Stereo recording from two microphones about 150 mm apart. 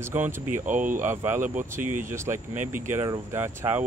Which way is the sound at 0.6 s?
60° right (ahead or behind).